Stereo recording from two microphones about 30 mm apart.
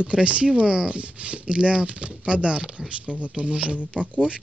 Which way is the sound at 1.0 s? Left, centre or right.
Right.